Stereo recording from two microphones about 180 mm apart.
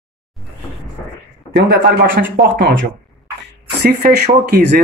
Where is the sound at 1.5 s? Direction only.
65° right (ahead or behind).